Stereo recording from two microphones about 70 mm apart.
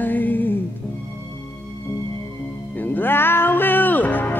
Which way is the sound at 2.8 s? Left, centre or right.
Left.